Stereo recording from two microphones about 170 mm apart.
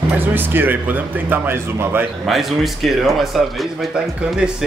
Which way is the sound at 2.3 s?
Centre (ahead or behind).